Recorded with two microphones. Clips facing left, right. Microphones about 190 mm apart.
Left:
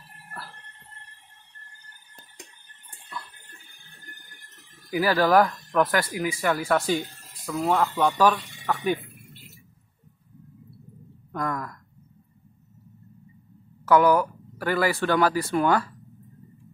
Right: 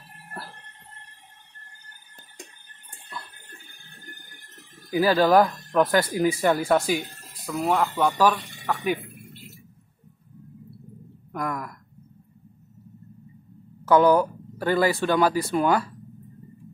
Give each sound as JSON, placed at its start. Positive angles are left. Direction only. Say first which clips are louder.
{"t": 4.9, "sound": "speech", "louder": "right 2 dB", "side_deg": -20}
{"t": 6.9, "sound": "speech", "louder": "even", "side_deg": -10}
{"t": 11.3, "sound": "a sound", "louder": "even", "side_deg": -10}
{"t": 13.8, "sound": "speech", "louder": "right 1 dB", "side_deg": -25}